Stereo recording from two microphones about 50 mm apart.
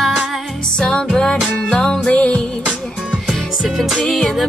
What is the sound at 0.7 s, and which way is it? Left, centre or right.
Music, centre.